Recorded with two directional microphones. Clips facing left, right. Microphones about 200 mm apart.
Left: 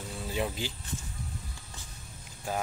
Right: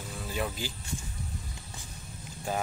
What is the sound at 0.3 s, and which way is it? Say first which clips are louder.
Speech: left 1 dB; 20° left (ahead or behind).